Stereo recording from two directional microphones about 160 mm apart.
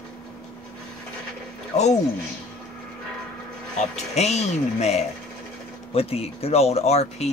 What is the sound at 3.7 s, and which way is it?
Speech, 45° left (ahead or behind).